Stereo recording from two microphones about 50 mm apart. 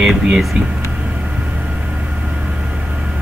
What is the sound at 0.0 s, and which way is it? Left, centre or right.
Speech, centre.